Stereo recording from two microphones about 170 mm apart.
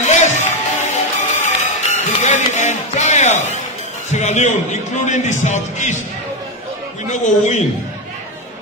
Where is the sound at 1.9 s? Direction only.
45° left (ahead or behind).